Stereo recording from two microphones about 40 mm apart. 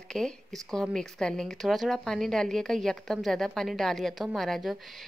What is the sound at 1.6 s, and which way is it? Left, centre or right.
A woman's voice, centre.